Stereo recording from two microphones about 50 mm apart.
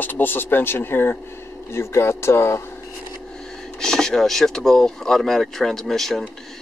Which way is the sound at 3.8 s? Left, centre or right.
Centre.